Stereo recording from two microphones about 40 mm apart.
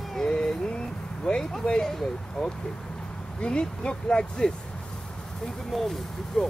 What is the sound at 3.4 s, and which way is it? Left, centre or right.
Speech, left.